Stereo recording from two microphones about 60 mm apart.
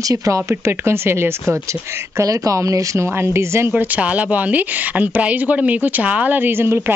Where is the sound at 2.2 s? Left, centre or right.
Right.